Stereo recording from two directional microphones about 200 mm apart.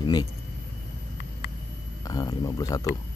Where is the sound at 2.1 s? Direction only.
20° left (ahead or behind).